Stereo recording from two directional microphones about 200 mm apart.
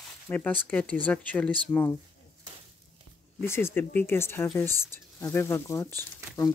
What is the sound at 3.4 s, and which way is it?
Speech, 10° left (ahead or behind).